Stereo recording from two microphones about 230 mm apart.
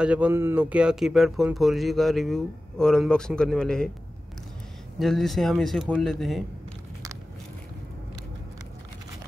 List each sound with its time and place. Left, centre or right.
0.0 s speech: centre
4.9 s speech: centre